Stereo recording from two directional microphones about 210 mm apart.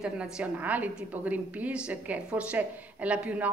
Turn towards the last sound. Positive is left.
turn(degrees=-5)  # may be behind; listen again after turning